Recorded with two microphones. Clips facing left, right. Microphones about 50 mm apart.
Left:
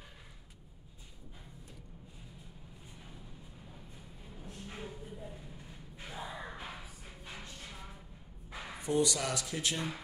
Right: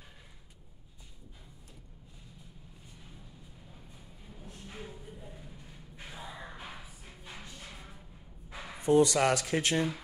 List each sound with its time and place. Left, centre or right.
4.4 s music: centre
6.1 s gasp: centre
7.3 s music: centre
8.8 s speech: right